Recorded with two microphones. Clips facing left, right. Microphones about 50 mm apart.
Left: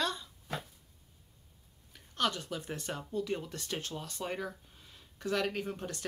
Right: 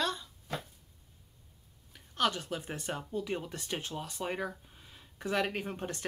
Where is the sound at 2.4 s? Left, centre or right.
Right.